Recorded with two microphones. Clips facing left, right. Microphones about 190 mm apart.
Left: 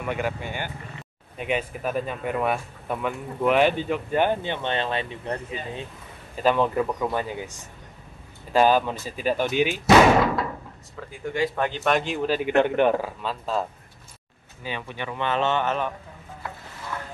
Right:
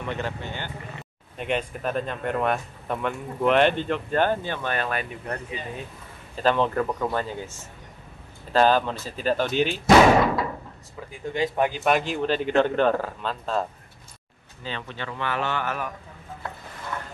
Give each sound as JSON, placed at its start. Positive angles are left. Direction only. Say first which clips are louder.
{"t": 0.0, "sound": "speech", "louder": "left 2 dB", "side_deg": 10}
{"t": 6.3, "sound": "speech", "louder": "left 1 dB", "side_deg": 10}
{"t": 11.3, "sound": "a man's voice", "louder": "right 1 dB", "side_deg": -20}